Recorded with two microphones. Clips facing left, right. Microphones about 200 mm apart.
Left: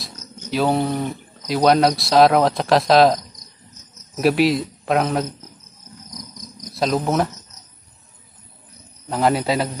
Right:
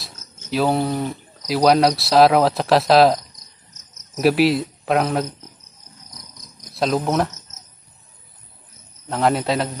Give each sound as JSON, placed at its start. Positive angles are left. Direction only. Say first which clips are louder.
{"t": 0.0, "sound": "speech", "louder": "left 6 dB", "side_deg": 0}
{"t": 4.2, "sound": "speech", "louder": "right 1 dB", "side_deg": 0}
{"t": 6.1, "sound": "cricket", "louder": "left 9 dB", "side_deg": 45}
{"t": 6.7, "sound": "speech", "louder": "even", "side_deg": 0}
{"t": 9.1, "sound": "a man's voice", "louder": "even", "side_deg": 0}